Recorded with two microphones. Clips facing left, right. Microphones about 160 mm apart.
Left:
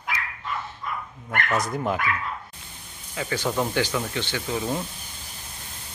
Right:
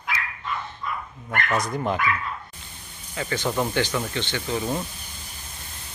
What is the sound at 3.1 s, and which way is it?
Speech, 5° left (ahead or behind).